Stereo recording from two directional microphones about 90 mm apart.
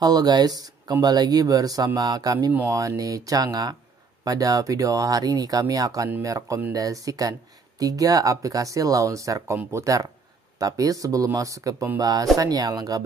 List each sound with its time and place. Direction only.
0.0 s speech: 50° right (ahead or behind)